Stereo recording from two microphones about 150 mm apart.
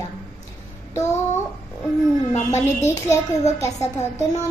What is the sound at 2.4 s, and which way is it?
Speech, 20° left (ahead or behind).